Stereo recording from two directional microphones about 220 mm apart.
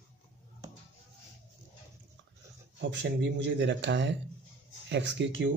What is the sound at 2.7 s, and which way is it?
Speech, 55° right (ahead or behind).